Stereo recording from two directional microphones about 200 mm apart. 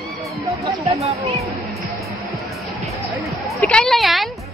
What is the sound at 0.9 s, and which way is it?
Speech, 15° right (ahead or behind).